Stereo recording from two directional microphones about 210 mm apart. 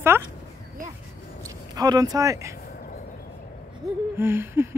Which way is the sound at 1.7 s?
20° right (ahead or behind).